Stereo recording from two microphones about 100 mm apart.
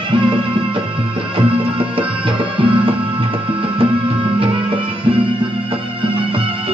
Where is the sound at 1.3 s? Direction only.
60° right (ahead or behind).